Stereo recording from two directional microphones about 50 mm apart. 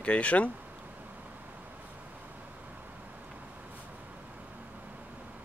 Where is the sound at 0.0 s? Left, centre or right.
Left.